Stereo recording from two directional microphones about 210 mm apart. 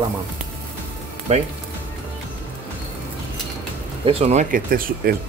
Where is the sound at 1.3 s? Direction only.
30° right (ahead or behind).